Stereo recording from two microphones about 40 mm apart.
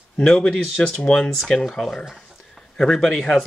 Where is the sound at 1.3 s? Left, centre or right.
Centre.